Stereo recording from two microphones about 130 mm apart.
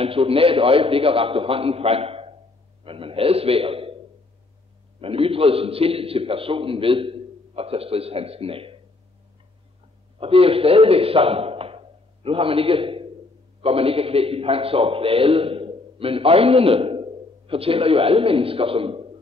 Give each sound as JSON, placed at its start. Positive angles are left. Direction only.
{"t": 0.0, "sound": "a man's voice", "side_deg": -45}
{"t": 5.0, "sound": "a man's voice", "side_deg": -45}
{"t": 10.2, "sound": "a man's voice", "side_deg": -45}